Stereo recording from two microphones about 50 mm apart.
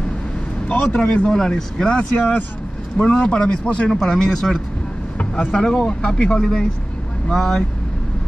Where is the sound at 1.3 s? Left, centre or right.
Centre.